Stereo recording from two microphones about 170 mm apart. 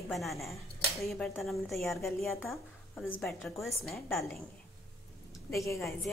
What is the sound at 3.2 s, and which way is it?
Speech, centre (ahead or behind).